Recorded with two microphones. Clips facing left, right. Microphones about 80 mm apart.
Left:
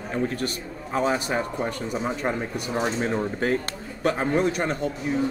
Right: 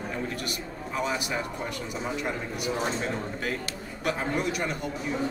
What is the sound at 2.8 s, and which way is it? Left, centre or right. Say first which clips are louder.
Speech: left 8 dB; left.